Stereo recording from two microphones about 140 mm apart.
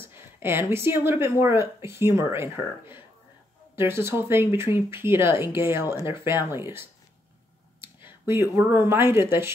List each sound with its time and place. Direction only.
0.0 s speech: 15° right (ahead or behind)